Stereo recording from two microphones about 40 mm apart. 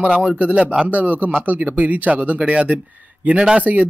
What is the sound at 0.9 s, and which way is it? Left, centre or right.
Speech, right.